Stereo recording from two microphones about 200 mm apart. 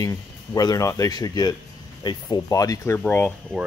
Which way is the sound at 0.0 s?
20° left (ahead or behind).